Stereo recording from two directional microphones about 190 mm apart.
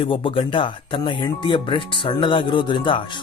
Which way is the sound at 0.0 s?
25° left (ahead or behind).